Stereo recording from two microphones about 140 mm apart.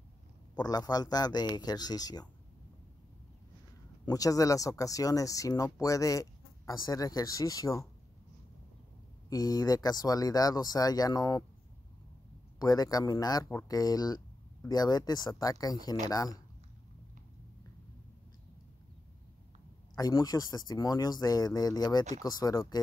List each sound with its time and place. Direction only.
0.6 s speech: 30° left (ahead or behind)
4.0 s speech: 25° left (ahead or behind)
9.3 s speech: 25° left (ahead or behind)
12.5 s speech: 25° left (ahead or behind)
20.0 s speech: 25° left (ahead or behind)